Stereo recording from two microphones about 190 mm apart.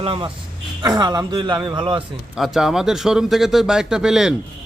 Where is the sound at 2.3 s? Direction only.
Centre (ahead or behind).